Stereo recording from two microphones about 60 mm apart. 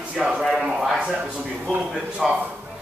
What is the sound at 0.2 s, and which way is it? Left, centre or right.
Speech, centre.